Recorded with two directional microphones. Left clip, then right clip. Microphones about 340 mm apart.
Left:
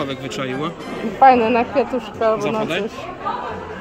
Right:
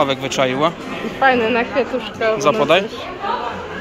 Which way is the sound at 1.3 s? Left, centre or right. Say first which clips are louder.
Even; left.